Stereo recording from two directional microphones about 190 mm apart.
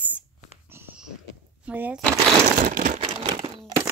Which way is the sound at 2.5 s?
45° right (ahead or behind).